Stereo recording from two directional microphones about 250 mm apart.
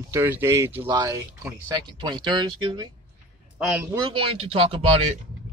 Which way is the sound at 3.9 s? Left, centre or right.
Centre.